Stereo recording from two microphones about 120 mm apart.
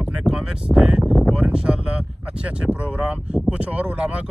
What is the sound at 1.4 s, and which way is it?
Speech, 10° right (ahead or behind).